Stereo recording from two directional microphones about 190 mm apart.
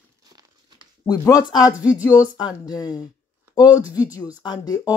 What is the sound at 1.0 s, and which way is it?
Speech, 20° left (ahead or behind).